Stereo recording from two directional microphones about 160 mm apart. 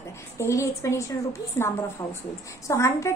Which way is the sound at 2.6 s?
20° left (ahead or behind).